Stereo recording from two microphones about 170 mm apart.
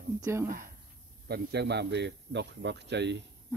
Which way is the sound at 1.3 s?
80° right.